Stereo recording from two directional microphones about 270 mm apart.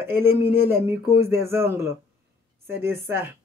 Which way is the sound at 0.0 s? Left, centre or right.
Centre.